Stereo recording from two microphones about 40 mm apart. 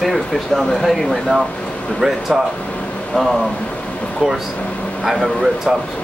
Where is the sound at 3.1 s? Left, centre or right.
Centre.